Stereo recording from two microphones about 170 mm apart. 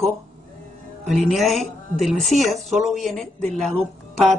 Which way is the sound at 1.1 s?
Centre (ahead or behind).